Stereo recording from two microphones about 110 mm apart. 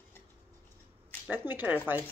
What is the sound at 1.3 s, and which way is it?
Speech, 20° right (ahead or behind).